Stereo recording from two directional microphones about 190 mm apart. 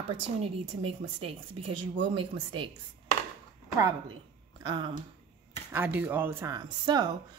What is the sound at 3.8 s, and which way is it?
A woman's voice, 20° right (ahead or behind).